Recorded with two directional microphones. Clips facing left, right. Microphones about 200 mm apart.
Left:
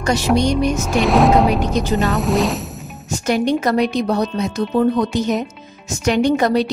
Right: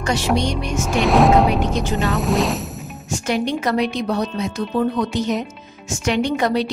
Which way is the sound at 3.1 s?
40° left (ahead or behind).